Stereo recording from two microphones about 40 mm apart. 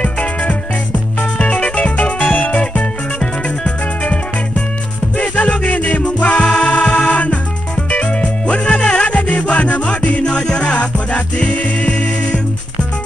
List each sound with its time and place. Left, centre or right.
0.0 s music: left
2.1 s music: left
3.8 s music: left
6.4 s music: left
10.2 s music: left